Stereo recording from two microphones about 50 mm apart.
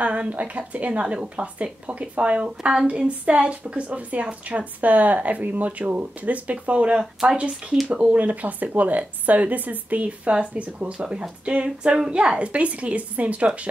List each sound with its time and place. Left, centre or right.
0.0 s a woman's voice: right